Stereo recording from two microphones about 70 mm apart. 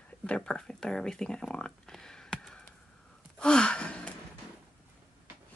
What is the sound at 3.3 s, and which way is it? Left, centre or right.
Gasp, centre.